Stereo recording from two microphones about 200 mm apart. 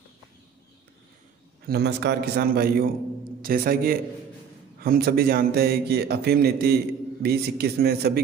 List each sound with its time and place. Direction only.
1.7 s a man's voice: 55° right (ahead or behind)